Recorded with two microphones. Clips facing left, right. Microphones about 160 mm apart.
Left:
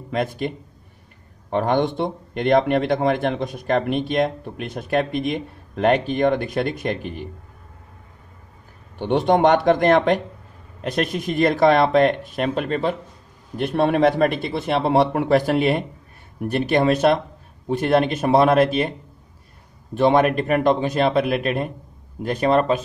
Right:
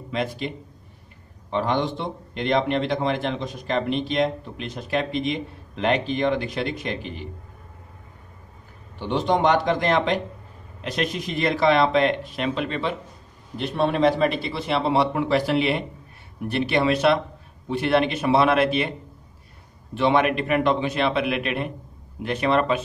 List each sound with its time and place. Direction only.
0.1 s a man's voice: 50° left (ahead or behind)
1.5 s a man's voice: 55° left (ahead or behind)
8.9 s a man's voice: 55° left (ahead or behind)
19.9 s a man's voice: 45° left (ahead or behind)